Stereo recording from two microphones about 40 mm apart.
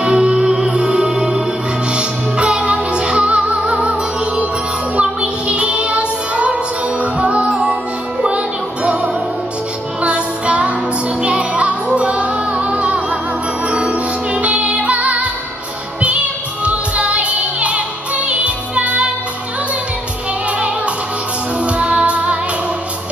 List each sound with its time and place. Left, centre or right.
0.0 s music: right
4.9 s music: right
20.5 s music: right